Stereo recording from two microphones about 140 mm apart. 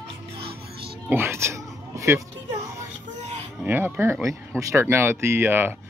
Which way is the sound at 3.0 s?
60° right (ahead or behind).